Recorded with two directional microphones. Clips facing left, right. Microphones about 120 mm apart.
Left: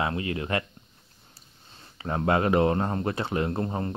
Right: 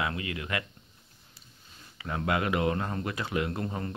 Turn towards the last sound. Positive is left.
turn(degrees=30)  # may be behind; listen again after turning